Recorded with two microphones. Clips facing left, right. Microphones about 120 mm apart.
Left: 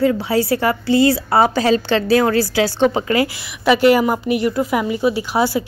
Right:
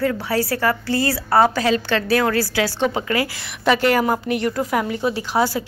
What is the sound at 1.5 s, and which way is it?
A woman's voice, 30° left (ahead or behind).